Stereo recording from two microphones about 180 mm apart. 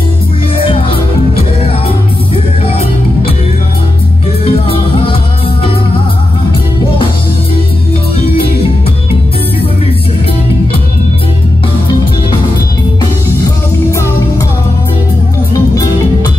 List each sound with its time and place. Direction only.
2.3 s music: 30° left (ahead or behind)
4.5 s music: 30° left (ahead or behind)
15.5 s music: 20° left (ahead or behind)